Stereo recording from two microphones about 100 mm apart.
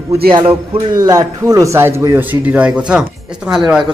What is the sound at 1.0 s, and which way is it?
Speech, 40° right (ahead or behind).